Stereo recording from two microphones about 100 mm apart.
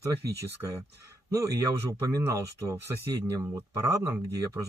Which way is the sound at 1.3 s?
30° right (ahead or behind).